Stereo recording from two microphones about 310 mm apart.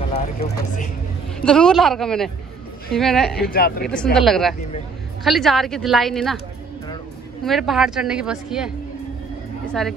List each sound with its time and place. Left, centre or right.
0.1 s speech: centre
1.4 s a woman's voice: centre
3.3 s speech: left
3.8 s a woman's voice: centre
7.4 s a woman's voice: centre